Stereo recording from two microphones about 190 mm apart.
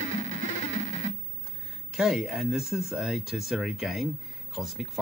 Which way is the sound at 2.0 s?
Centre (ahead or behind).